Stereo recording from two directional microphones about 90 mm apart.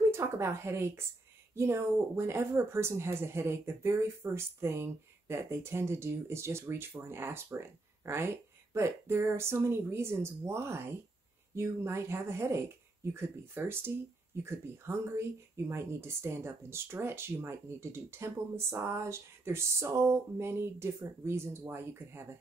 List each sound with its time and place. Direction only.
0.1 s speech: 30° right (ahead or behind)